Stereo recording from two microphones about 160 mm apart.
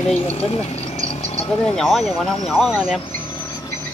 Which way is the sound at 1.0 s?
40° left (ahead or behind).